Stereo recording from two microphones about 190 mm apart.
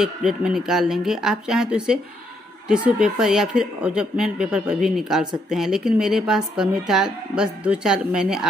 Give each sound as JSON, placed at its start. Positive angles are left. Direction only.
{"t": 0.0, "sound": "a woman's voice", "side_deg": 0}